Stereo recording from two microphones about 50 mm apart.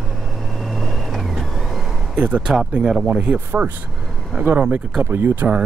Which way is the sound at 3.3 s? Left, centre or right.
Right.